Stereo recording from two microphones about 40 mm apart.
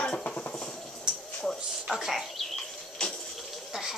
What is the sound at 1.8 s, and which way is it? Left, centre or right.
Speech, centre.